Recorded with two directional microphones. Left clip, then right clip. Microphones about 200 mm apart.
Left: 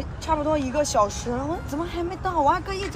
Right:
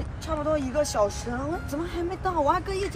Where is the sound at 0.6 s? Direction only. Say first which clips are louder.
Left 3 dB; 20° left (ahead or behind).